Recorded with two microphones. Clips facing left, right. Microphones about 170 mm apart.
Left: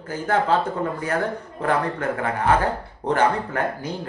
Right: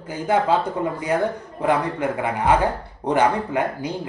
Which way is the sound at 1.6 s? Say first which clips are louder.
Right 2 dB; 10° right (ahead or behind).